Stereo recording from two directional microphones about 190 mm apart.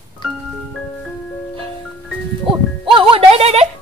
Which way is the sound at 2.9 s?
30° right (ahead or behind).